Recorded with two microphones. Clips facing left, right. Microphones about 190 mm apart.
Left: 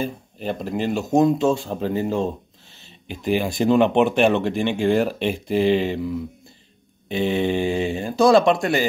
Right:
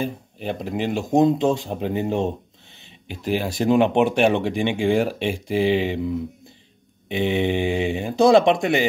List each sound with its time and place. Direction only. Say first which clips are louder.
0.0 s speech: even; 15° right (ahead or behind)
3.3 s speech: left 1 dB; 5° right (ahead or behind)